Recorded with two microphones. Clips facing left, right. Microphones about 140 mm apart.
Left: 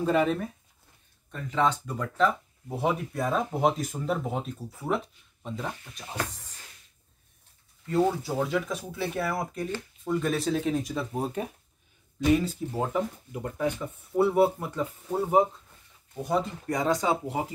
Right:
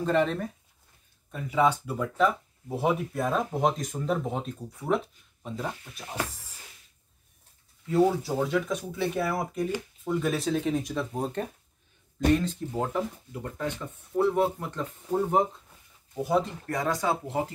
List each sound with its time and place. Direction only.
0.0 s speech: 5° left (ahead or behind)
1.3 s speech: 10° right (ahead or behind)
7.8 s speech: centre (ahead or behind)
16.2 s speech: centre (ahead or behind)
16.6 s speech: 20° left (ahead or behind)